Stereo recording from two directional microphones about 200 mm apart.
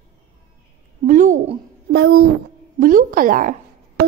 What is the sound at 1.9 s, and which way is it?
Speech, 60° right (ahead or behind).